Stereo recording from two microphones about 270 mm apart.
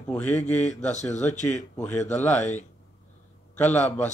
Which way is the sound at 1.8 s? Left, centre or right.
Centre.